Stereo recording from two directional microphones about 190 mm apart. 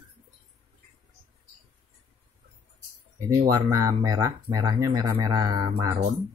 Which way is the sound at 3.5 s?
15° right (ahead or behind).